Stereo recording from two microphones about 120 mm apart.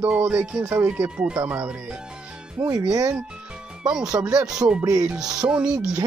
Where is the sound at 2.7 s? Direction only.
30° right (ahead or behind).